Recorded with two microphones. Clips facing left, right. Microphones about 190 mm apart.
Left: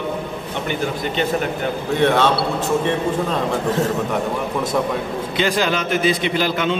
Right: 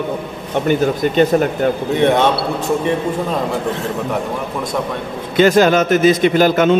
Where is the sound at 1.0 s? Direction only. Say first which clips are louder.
Right 7 dB; 45° right (ahead or behind).